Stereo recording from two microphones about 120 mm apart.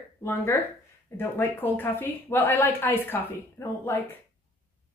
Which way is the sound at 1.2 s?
20° left (ahead or behind).